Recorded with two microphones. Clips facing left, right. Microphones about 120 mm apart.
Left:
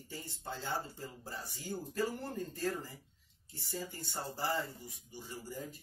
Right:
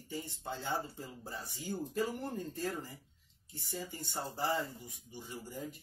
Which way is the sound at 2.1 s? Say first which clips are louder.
Right 1 dB; 15° right (ahead or behind).